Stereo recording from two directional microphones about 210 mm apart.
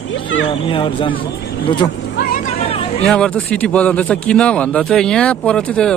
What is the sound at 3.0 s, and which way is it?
Speech, 5° left (ahead or behind).